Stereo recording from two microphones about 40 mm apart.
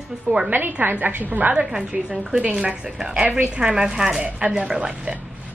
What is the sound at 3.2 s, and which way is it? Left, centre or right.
Speech, right.